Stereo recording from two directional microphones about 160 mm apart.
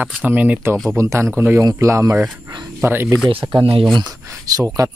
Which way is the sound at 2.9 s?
15° right (ahead or behind).